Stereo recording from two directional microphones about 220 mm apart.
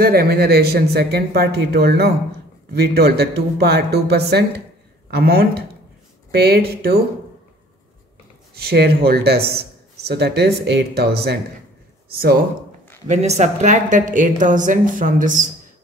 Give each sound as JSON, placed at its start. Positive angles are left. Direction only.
{"t": 0.0, "sound": "speech", "side_deg": -45}
{"t": 8.5, "sound": "speech", "side_deg": -45}
{"t": 13.0, "sound": "a woman's voice", "side_deg": -30}